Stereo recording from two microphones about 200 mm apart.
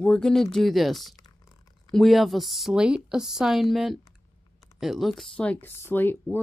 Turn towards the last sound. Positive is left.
turn(degrees=10)  # may be behind; listen again after turning